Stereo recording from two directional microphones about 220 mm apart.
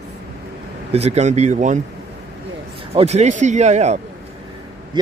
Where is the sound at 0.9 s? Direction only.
30° right (ahead or behind).